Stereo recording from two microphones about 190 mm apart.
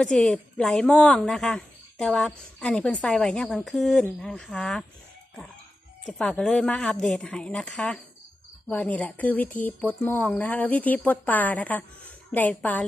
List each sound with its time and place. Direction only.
0.0 s a woman's voice: 5° left (ahead or behind)
6.0 s a woman's voice: 5° left (ahead or behind)